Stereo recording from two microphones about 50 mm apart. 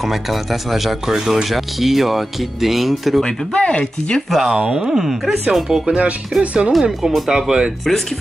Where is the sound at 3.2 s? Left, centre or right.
Left.